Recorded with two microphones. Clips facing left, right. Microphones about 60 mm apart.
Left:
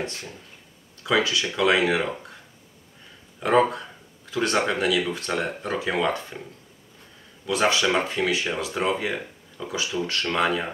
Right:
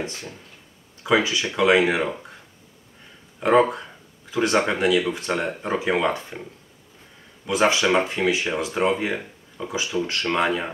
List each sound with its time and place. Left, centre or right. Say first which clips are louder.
1.0 s speech: right 2 dB; centre
3.3 s speech: right 2 dB; right
5.4 s speech: right 2 dB; right
7.4 s speech: right 2 dB; centre